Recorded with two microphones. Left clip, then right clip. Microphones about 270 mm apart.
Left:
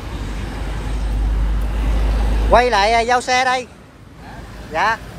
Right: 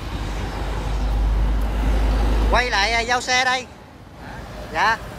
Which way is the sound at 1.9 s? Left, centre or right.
Right.